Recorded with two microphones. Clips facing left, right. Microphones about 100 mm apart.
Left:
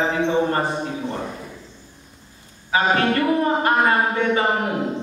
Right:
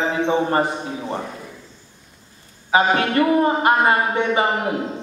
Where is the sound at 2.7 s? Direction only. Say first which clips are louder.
Right 1 dB; 20° right (ahead or behind).